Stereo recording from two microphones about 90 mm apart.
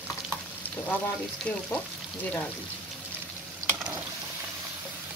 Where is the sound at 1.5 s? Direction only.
10° left (ahead or behind).